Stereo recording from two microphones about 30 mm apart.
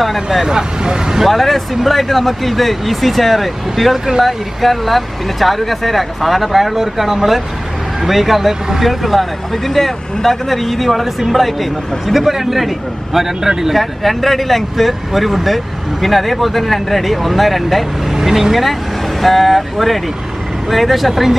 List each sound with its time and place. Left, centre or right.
0.0 s speech: centre
0.5 s speech: right
1.2 s speech: centre
12.1 s speech: centre
13.7 s speech: centre
18.2 s speech: centre
19.2 s speech: centre